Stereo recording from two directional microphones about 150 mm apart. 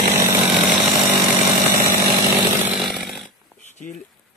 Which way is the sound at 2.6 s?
Centre (ahead or behind).